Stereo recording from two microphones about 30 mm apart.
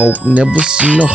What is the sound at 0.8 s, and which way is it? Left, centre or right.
Speech, right.